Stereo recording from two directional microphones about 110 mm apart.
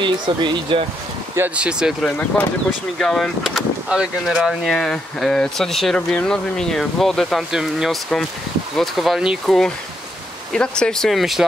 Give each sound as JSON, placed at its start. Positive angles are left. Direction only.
{"t": 0.0, "sound": "speech", "side_deg": -45}
{"t": 1.5, "sound": "speech", "side_deg": -10}
{"t": 10.5, "sound": "speech", "side_deg": 5}